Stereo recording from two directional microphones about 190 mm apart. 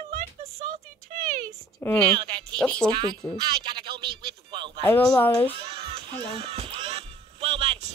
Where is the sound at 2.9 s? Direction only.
20° right (ahead or behind).